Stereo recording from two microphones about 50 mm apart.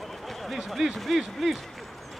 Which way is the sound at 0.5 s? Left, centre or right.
Centre.